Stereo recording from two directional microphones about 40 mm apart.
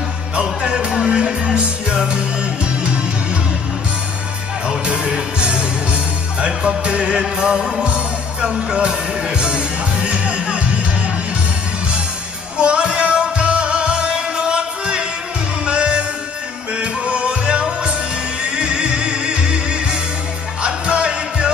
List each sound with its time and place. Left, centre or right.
0.4 s music: centre
4.6 s music: right
12.5 s music: right